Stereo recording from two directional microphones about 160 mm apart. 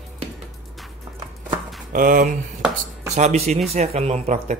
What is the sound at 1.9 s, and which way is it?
Speech, 60° right (ahead or behind).